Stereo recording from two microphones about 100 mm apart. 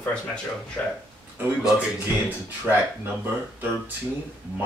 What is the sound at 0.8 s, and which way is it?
Speech, 20° left (ahead or behind).